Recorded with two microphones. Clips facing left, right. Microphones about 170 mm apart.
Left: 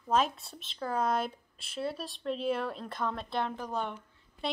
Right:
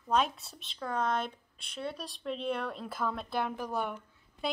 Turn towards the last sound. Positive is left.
turn(degrees=-10)  # may be behind; listen again after turning